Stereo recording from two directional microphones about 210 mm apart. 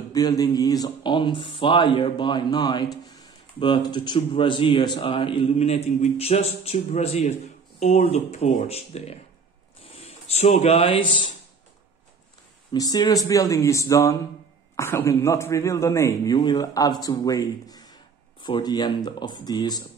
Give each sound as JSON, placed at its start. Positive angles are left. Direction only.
{"t": 0.1, "sound": "speech", "side_deg": 15}
{"t": 12.7, "sound": "a man's voice", "side_deg": 15}